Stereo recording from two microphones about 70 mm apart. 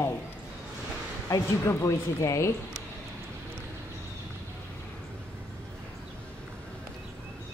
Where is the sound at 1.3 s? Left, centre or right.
Left.